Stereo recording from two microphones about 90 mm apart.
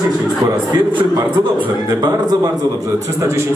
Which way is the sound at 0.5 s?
55° right (ahead or behind).